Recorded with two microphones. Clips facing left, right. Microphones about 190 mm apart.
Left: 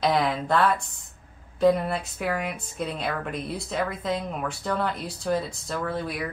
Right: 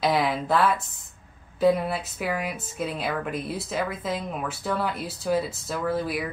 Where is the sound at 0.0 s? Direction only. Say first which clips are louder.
Even; 5° right (ahead or behind).